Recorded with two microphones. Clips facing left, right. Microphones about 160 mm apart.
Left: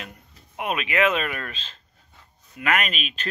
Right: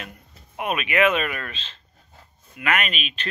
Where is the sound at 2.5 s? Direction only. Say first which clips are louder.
Even; 35° left (ahead or behind).